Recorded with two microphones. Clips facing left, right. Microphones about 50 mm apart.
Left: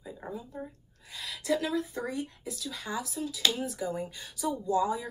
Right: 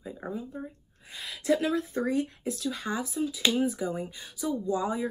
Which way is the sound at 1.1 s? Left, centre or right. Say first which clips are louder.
Right 3 dB; right.